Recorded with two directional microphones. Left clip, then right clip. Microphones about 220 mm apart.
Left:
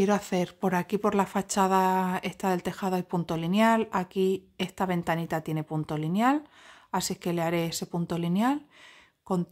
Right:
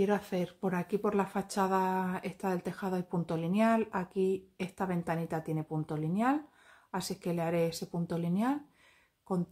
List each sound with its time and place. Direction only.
0.0 s speech: 45° left (ahead or behind)